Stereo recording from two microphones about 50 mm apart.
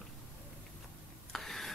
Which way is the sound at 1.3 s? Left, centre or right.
Centre.